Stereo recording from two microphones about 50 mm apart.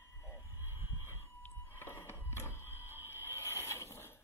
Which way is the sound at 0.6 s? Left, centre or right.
Left.